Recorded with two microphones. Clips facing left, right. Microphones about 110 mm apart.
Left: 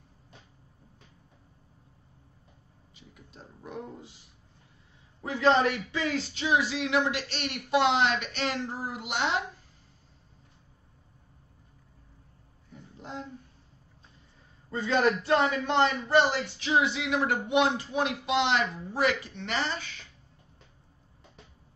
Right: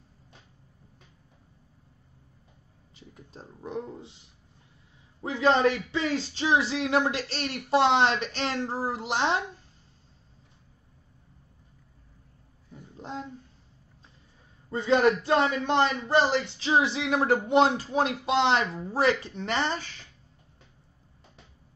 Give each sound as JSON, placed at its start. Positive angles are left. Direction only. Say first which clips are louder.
{"t": 3.0, "sound": "speech", "louder": "right 4 dB", "side_deg": -30}
{"t": 5.2, "sound": "speech", "louder": "right 1 dB", "side_deg": -25}
{"t": 14.7, "sound": "speech", "louder": "right 3 dB", "side_deg": -25}